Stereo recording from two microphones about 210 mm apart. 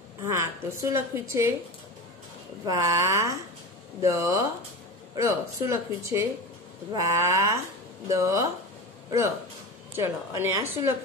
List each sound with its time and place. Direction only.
0.2 s a woman's voice: 15° right (ahead or behind)
2.6 s speech: 15° right (ahead or behind)
9.9 s speech: 10° right (ahead or behind)